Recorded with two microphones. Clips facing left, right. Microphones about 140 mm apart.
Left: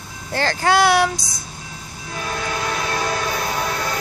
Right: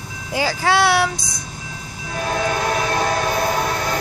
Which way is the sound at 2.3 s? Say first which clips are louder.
Right 5 dB; 45° right (ahead or behind).